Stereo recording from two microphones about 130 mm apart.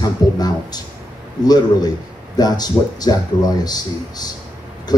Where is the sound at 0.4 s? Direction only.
30° left (ahead or behind).